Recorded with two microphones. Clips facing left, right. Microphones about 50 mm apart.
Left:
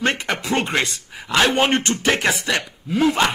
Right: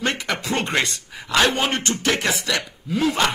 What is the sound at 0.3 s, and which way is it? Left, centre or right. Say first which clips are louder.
A man's voice: left 2 dB; centre.